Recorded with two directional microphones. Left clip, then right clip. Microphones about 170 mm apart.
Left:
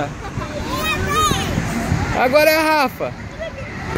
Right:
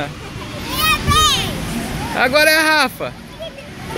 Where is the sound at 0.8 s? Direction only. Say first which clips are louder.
Right 5 dB; 65° left (ahead or behind).